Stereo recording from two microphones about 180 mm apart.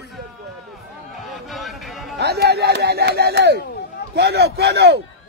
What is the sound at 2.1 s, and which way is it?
A man's voice, 65° right (ahead or behind).